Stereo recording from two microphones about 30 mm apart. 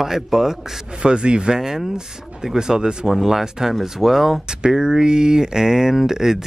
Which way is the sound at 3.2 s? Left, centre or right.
Centre.